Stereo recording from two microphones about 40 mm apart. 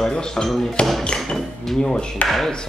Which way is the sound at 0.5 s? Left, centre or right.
Centre.